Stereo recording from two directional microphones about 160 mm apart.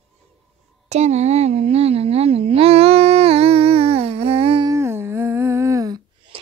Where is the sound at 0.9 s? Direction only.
45° right (ahead or behind).